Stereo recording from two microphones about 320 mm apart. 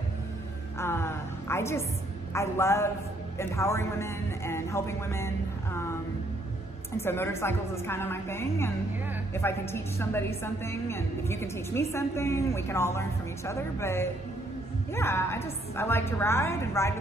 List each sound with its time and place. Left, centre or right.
0.7 s music: centre
2.3 s a woman's voice: centre
7.0 s a woman's voice: centre